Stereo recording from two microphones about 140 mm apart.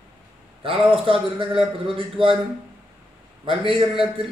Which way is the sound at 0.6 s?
40° right (ahead or behind).